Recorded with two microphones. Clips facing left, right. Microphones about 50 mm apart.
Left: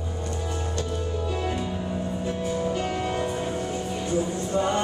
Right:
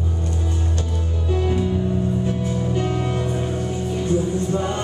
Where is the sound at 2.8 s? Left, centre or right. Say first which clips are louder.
Right 3 dB; centre.